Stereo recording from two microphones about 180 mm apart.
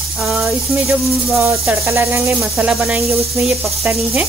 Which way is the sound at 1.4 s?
15° right (ahead or behind).